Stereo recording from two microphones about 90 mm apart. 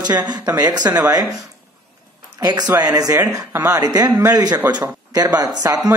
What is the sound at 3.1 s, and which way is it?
Speech, 30° right (ahead or behind).